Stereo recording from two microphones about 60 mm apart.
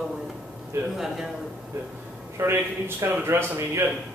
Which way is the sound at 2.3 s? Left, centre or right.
Right.